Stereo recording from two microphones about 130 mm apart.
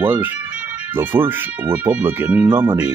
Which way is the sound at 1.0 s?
15° right (ahead or behind).